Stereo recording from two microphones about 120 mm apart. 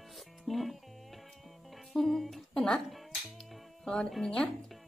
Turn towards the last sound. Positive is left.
turn(degrees=5)  # may be behind; listen again after turning